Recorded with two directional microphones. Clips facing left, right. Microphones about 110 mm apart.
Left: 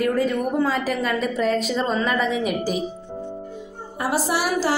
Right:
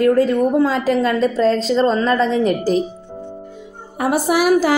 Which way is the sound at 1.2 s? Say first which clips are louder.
Right 6 dB; 90° right.